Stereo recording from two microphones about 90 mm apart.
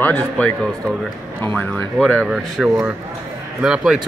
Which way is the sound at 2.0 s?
5° left (ahead or behind).